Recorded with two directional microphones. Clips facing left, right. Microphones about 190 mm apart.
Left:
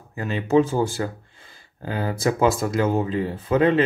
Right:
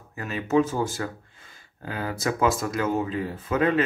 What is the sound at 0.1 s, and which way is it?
Speech, 30° left (ahead or behind).